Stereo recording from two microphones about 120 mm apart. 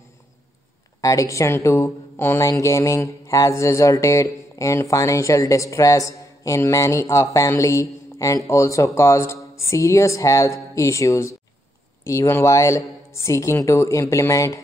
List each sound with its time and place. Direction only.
1.0 s speech: 25° left (ahead or behind)